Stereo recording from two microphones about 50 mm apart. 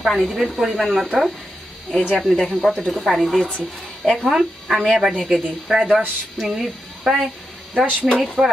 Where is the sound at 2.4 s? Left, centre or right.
Centre.